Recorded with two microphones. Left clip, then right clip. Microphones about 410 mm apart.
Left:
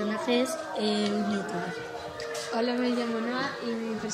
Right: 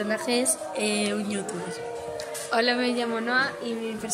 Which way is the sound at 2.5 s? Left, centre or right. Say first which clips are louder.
Right 5 dB; right.